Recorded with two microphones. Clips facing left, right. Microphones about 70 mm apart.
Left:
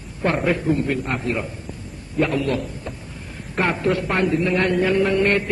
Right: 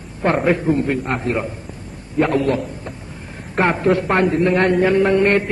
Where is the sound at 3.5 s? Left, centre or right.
Right.